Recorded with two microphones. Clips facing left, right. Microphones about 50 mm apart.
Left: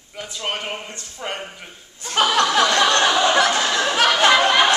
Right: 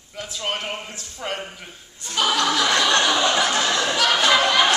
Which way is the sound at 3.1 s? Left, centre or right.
Centre.